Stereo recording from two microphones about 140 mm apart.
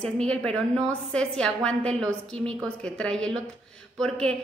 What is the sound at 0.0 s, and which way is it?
A woman's voice, 5° left (ahead or behind).